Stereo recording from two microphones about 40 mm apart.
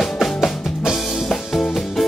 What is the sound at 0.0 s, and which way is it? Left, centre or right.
Music, centre.